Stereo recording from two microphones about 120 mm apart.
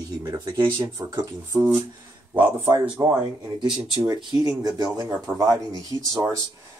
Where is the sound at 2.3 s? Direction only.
15° right (ahead or behind).